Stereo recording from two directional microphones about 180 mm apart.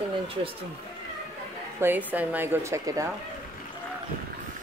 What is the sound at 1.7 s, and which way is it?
Speech, 10° right (ahead or behind).